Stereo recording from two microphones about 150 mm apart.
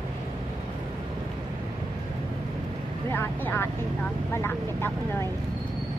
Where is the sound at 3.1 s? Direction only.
15° left (ahead or behind).